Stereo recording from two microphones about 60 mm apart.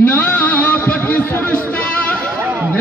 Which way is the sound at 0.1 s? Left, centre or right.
Left.